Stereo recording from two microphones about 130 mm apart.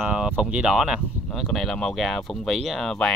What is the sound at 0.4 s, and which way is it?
Speech, 5° right (ahead or behind).